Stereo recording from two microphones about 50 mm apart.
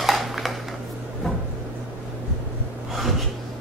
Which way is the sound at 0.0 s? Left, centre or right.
Centre.